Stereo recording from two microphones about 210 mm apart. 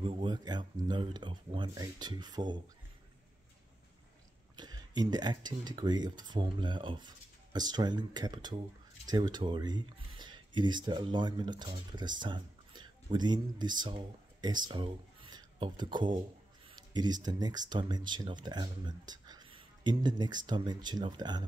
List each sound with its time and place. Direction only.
0.0 s speech: 25° right (ahead or behind)
4.6 s speech: 20° right (ahead or behind)